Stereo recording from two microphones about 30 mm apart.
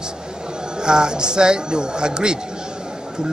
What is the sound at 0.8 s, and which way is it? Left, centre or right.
A woman's voice, right.